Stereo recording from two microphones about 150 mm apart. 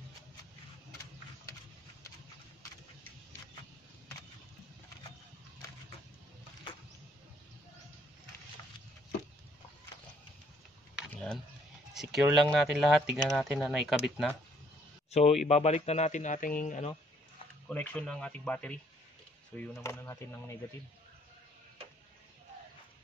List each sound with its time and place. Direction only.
11.0 s a sound: 5° left (ahead or behind)
11.9 s speech: centre (ahead or behind)
15.0 s speech: 45° left (ahead or behind)
17.6 s speech: 5° left (ahead or behind)